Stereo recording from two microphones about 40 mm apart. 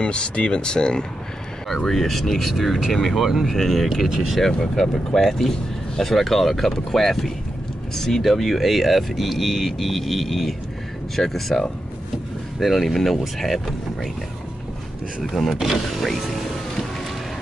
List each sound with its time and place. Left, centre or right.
0.0 s speech: left
1.9 s speech: centre
3.2 s speech: centre
15.2 s speech: centre